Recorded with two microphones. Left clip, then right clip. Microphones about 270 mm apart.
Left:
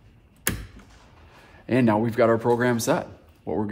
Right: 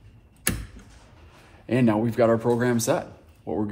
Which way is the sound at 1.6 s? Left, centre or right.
Left.